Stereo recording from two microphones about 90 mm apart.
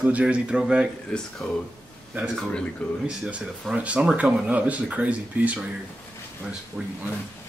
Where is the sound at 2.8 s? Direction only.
10° left (ahead or behind).